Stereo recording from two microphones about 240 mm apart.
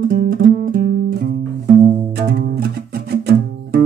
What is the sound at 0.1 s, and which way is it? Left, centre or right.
Music, right.